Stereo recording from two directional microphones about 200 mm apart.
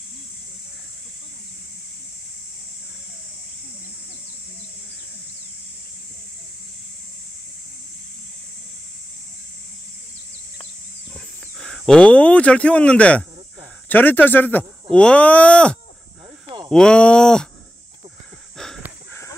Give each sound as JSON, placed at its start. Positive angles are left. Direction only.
{"t": 11.6, "sound": "speech", "side_deg": 5}
{"t": 16.4, "sound": "a sound", "side_deg": -25}
{"t": 16.7, "sound": "speech", "side_deg": 5}